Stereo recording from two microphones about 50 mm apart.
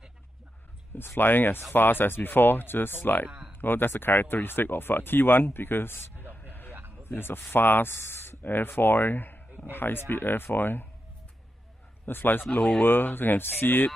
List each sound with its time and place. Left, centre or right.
0.9 s speech: left
12.1 s speech: left